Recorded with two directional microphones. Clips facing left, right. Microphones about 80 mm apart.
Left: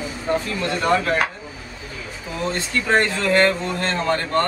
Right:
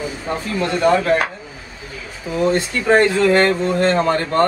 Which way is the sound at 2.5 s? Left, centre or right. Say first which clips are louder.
Right 3 dB; centre.